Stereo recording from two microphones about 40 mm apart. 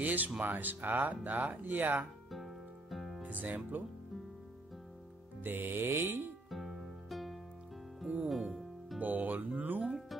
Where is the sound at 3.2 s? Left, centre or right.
Right.